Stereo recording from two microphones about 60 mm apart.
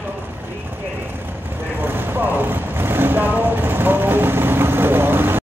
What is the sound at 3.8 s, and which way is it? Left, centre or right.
Vehicle, right.